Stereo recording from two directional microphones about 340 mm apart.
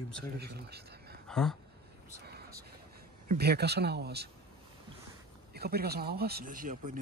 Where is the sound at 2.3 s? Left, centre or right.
Right.